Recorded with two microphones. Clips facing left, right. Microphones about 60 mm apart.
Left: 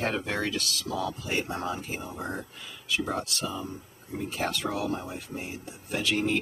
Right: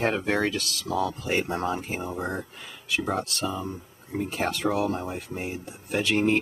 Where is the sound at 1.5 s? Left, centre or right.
Right.